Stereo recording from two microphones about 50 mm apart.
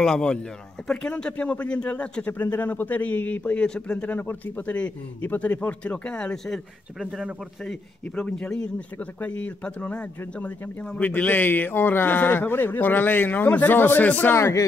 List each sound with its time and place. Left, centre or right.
0.0 s a man's voice: centre; by 3.6 s left
3.6 s speech: centre
4.1 s a man's voice: left
4.6 s speech: left
6.3 s speech: centre
8.5 s speech: centre
9.2 s a man's voice: left
14.3 s speech: left